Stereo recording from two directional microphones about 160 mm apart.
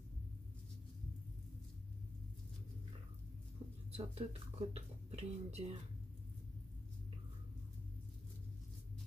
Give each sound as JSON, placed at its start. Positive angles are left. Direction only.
{"t": 3.9, "sound": "speech", "side_deg": -40}